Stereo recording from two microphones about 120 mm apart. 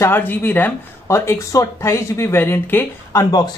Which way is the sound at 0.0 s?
15° left (ahead or behind).